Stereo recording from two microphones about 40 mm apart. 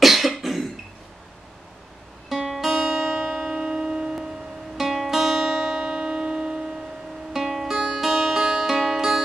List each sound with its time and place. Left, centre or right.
0.0 s cough: centre
2.2 s guitar: centre
2.7 s music: centre
7.3 s music: centre